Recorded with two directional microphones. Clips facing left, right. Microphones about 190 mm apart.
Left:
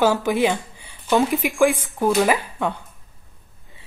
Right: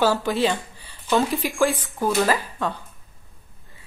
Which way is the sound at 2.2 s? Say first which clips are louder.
Left 2 dB; 15° left (ahead or behind).